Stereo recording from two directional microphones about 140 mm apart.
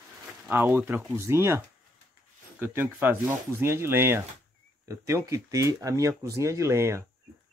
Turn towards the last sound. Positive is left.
turn(degrees=-20)  # may be behind; listen again after turning